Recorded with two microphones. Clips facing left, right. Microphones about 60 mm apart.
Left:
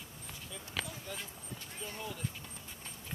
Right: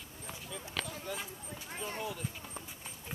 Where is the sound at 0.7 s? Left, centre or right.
Centre.